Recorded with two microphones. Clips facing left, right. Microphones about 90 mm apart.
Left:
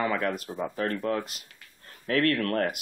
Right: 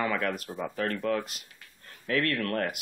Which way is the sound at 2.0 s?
50° left (ahead or behind).